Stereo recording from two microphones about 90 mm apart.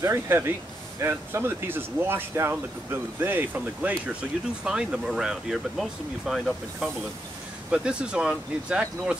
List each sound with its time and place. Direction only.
0.0 s speech: 30° right (ahead or behind)
4.6 s speech: 5° right (ahead or behind)